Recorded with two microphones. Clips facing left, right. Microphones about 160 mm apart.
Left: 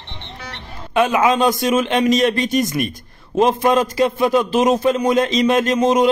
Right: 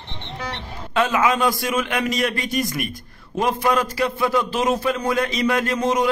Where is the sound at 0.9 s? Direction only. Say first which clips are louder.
Left 4 dB; 20° left (ahead or behind).